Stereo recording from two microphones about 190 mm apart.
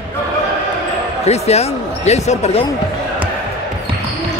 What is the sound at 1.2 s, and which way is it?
Speech, 35° left (ahead or behind).